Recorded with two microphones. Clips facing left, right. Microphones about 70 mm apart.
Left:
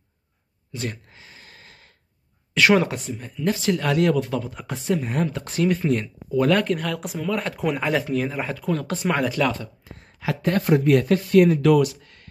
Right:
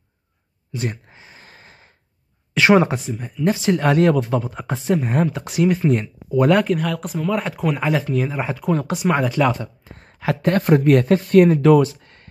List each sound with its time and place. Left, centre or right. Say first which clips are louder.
0.7 s gasp: right 4 dB; right
2.5 s a sound: right 3 dB; right
3.1 s speech: right 5 dB; centre
3.4 s speech: right 4 dB; right
6.6 s speech: right 4 dB; centre
9.8 s speech: right 5 dB; right